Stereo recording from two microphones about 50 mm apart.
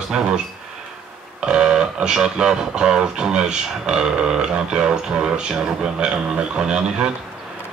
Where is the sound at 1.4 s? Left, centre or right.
Centre.